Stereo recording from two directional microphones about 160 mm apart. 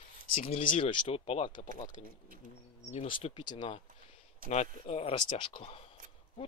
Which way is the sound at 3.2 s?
30° left (ahead or behind).